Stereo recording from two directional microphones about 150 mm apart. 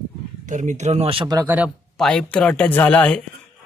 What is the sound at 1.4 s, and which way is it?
Speech, 10° right (ahead or behind).